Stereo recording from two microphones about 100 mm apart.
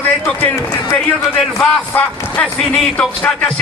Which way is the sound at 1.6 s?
15° left (ahead or behind).